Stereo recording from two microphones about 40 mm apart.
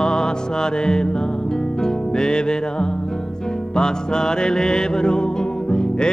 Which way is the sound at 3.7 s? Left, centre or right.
Centre.